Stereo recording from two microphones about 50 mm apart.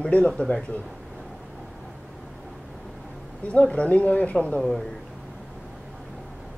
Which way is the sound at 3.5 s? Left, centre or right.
Left.